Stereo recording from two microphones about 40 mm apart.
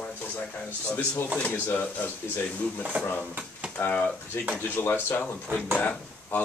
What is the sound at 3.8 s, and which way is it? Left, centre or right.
Speech, left.